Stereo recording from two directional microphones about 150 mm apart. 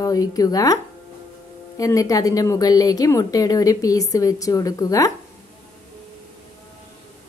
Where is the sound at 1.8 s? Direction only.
20° left (ahead or behind).